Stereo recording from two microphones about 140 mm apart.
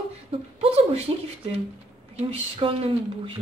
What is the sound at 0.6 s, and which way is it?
Speech, 45° right (ahead or behind).